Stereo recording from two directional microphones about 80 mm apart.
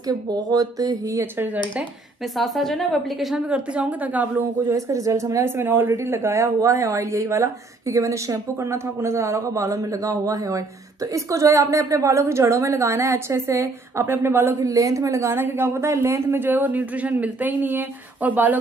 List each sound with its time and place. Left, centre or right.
0.3 s speech: right
2.3 s a woman's voice: centre
3.4 s speech: centre
4.6 s speech: right
5.6 s speech: right
14.6 s speech: right